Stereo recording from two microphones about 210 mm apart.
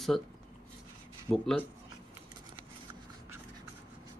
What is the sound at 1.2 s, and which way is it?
Speech, 5° left (ahead or behind).